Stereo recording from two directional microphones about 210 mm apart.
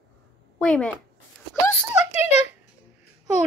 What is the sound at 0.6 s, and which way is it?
Speech, 5° left (ahead or behind).